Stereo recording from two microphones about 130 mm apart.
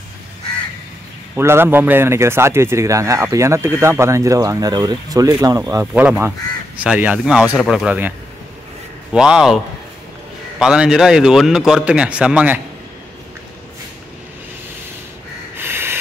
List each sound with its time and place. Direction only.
1.3 s a man's voice: 20° right (ahead or behind)
5.9 s speech: 15° right (ahead or behind)
9.1 s a man's voice: 5° right (ahead or behind)
10.6 s a man's voice: 5° right (ahead or behind)
15.5 s snort: 15° right (ahead or behind)